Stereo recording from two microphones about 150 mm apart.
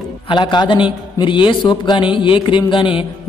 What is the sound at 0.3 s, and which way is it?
Mantra, 30° left (ahead or behind).